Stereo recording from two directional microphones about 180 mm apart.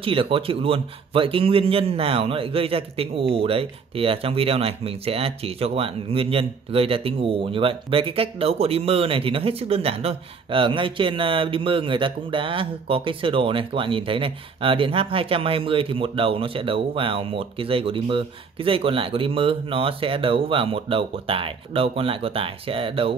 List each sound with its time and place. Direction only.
0.0 s speech: 30° right (ahead or behind)